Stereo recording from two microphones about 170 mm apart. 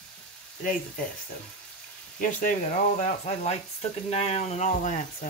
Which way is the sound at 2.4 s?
45° left (ahead or behind).